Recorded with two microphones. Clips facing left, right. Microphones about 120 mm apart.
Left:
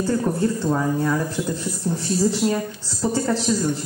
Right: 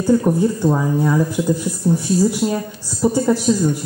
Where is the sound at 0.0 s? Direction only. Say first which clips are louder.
Right 6 dB; 15° right (ahead or behind).